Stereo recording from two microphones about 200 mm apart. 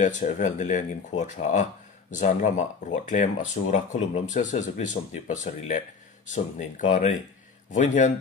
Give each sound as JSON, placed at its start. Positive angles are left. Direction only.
{"t": 0.0, "sound": "speech", "side_deg": 40}